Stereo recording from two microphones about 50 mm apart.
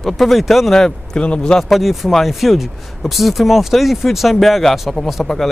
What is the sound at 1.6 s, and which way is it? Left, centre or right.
Speech, centre.